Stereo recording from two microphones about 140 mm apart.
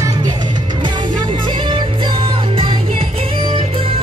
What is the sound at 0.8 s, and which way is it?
Music, 35° right (ahead or behind).